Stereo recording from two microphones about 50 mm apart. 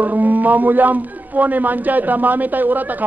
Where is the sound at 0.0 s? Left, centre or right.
Right.